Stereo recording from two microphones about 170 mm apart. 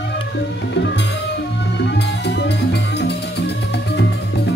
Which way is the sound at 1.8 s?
85° left.